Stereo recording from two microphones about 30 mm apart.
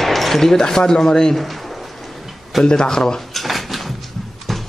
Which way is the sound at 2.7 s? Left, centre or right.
Left.